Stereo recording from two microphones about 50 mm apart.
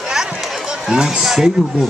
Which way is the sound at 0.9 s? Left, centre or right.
Centre.